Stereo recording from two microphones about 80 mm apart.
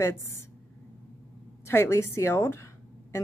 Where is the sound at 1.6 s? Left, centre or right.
Left.